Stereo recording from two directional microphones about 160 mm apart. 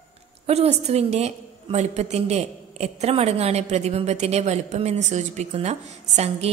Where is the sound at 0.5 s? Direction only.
40° right (ahead or behind).